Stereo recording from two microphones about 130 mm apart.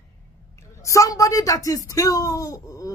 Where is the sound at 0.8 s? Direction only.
25° left (ahead or behind).